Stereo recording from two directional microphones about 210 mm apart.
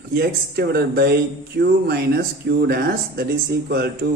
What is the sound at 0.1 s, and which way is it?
A man's voice, 50° right (ahead or behind).